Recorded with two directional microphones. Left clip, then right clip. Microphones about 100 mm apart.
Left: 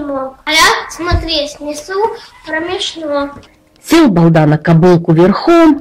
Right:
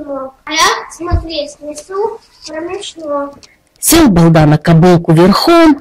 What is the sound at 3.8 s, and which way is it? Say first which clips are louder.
A woman's voice: right 1 dB; 25° right (ahead or behind).